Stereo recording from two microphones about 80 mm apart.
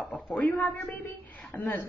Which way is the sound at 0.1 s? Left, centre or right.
Centre.